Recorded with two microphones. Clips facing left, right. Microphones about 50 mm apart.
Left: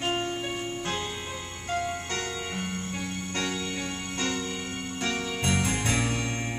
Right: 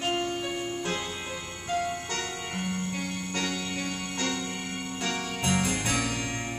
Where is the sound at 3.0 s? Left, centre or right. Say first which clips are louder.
Even; left.